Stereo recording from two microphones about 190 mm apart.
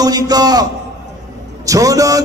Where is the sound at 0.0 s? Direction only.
20° right (ahead or behind).